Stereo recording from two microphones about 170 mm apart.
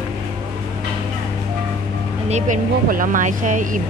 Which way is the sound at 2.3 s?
50° right (ahead or behind).